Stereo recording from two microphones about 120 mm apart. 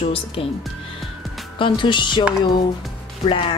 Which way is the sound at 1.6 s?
40° left (ahead or behind).